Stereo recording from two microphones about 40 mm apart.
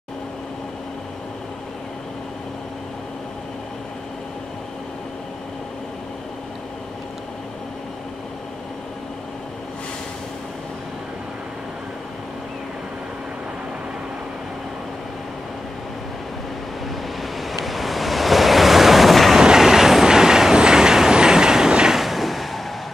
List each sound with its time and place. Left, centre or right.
17.2 s waves: centre
19.4 s train: centre
21.9 s a sound: centre